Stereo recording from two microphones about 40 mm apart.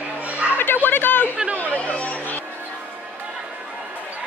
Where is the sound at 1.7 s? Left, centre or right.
Left.